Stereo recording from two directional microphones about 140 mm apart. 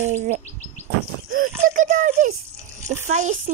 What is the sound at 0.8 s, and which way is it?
Chirp, 90° right.